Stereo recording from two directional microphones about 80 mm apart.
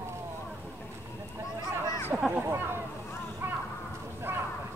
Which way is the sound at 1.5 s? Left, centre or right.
Right.